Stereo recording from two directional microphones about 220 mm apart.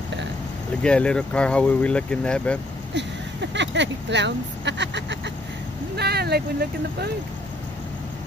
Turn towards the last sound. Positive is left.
turn(degrees=-45)  # may be behind; listen again after turning